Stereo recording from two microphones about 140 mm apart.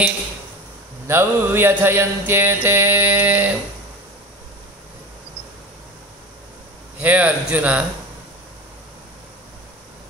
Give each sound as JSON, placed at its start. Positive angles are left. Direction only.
{"t": 1.0, "sound": "mantra", "side_deg": -15}
{"t": 7.0, "sound": "mantra", "side_deg": -10}